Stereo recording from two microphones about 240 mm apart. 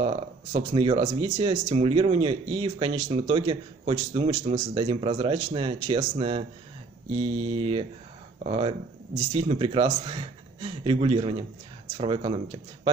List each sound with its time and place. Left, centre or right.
0.0 s speech: right
7.5 s speech: right